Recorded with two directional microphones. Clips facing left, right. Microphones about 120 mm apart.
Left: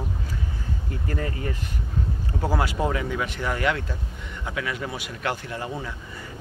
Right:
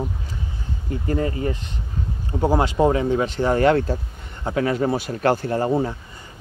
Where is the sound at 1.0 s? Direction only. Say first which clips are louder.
Right 7 dB; 25° right (ahead or behind).